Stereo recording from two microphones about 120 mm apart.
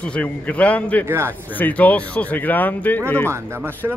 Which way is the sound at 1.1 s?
20° right (ahead or behind).